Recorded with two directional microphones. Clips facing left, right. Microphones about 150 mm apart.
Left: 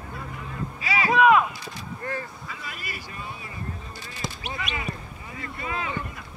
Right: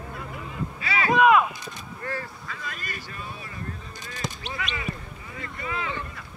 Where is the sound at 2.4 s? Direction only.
5° left (ahead or behind).